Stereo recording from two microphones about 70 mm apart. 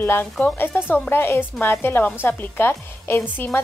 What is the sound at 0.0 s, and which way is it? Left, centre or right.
A woman's voice, left.